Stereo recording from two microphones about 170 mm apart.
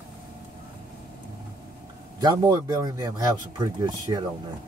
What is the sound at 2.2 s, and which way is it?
Speech, 20° right (ahead or behind).